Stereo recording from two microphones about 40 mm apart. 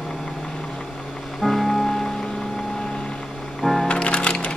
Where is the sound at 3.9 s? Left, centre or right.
Left.